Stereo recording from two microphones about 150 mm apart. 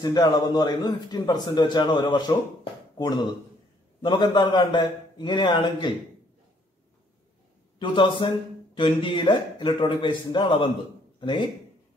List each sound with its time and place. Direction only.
0.0 s a man's voice: 25° left (ahead or behind)
7.8 s a man's voice: 35° left (ahead or behind)